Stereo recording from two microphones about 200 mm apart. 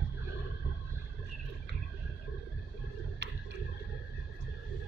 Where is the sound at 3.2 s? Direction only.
60° right (ahead or behind).